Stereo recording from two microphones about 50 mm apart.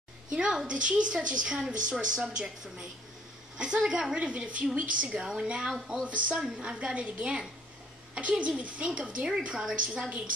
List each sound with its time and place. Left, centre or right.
0.3 s a woman's voice: centre